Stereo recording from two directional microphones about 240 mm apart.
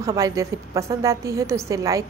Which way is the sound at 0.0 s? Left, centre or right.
Centre.